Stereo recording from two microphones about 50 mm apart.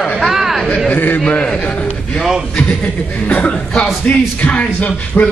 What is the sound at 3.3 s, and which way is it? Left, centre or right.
Speech, left.